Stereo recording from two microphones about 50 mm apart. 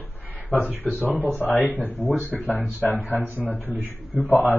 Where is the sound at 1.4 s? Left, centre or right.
Left.